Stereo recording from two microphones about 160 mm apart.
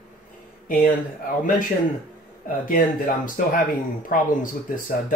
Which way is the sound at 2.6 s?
60° left (ahead or behind).